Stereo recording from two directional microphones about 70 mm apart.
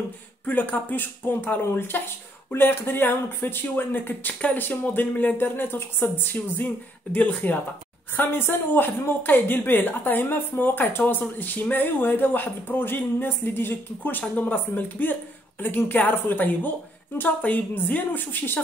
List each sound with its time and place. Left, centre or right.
0.5 s speech: left